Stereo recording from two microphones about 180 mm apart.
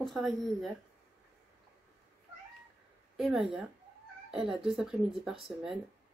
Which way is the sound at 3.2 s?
5° right (ahead or behind).